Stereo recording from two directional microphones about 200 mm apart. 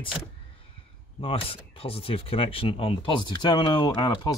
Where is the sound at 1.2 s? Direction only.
25° left (ahead or behind).